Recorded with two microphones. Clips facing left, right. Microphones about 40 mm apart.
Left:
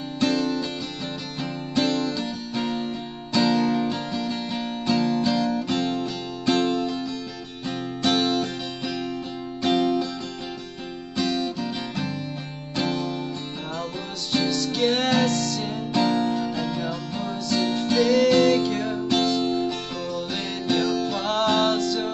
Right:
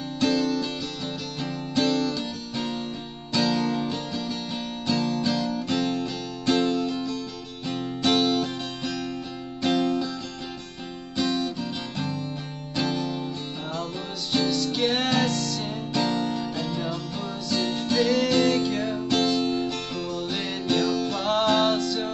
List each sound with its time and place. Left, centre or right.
0.2 s music: centre
4.9 s music: left
6.9 s music: centre
9.8 s music: centre
11.1 s music: centre
14.3 s music: centre
15.9 s music: centre